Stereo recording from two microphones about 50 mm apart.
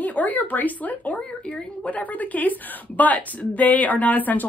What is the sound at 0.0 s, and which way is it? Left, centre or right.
A woman's voice, left.